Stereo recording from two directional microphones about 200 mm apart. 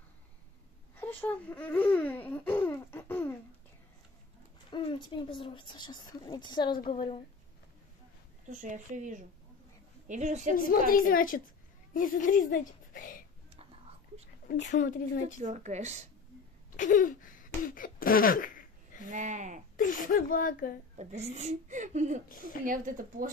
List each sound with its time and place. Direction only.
0.9 s speech: 10° left (ahead or behind)
2.6 s a sound: 10° left (ahead or behind)
4.6 s speech: 25° left (ahead or behind)
8.5 s speech: 40° right (ahead or behind)
10.5 s speech: 45° left (ahead or behind)
15.4 s speech: 35° right (ahead or behind)
16.7 s a sound: 40° left (ahead or behind)
19.0 s speech: 40° right (ahead or behind)
19.8 s speech: 40° left (ahead or behind)
21.0 s speech: 35° right (ahead or behind)
22.3 s speech: 45° left (ahead or behind)
22.7 s speech: 45° right (ahead or behind)